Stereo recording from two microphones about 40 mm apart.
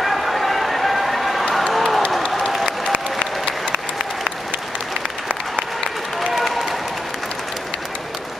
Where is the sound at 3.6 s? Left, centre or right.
Right.